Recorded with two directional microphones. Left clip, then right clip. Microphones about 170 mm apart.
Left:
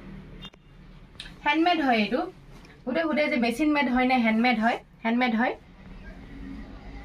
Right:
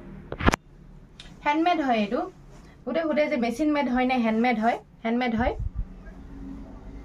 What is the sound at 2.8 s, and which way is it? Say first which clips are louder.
A woman's voice: right 1 dB; 20° right (ahead or behind).